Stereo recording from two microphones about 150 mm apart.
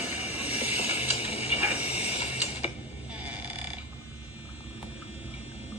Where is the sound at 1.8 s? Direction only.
45° left (ahead or behind).